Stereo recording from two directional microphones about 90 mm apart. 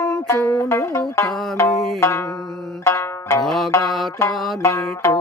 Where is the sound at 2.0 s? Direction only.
30° left (ahead or behind).